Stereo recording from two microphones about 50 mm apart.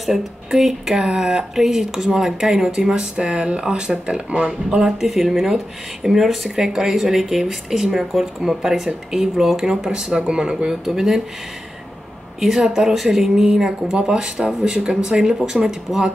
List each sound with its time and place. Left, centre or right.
0.5 s speech: centre
12.4 s speech: centre